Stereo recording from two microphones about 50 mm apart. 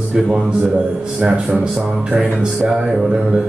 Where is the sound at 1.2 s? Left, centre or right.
Right.